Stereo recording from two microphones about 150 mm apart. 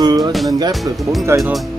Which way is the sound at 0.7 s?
Centre (ahead or behind).